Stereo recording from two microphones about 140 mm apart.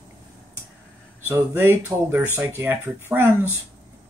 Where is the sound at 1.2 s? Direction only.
15° right (ahead or behind).